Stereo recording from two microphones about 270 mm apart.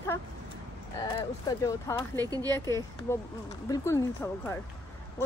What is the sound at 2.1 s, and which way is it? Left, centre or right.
Speech, centre.